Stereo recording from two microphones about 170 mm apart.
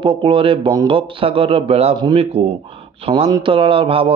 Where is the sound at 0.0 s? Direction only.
30° right (ahead or behind).